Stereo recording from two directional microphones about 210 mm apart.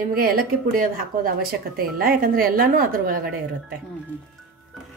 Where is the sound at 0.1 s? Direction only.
45° right (ahead or behind).